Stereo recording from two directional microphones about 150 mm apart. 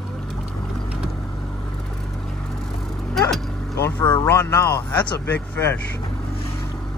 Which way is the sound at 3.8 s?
15° left (ahead or behind).